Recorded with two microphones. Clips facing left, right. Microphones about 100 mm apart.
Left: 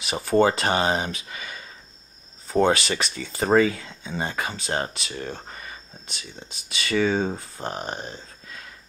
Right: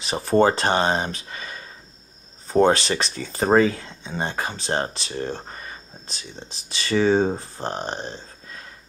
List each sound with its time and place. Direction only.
0.0 s speech: 35° right (ahead or behind)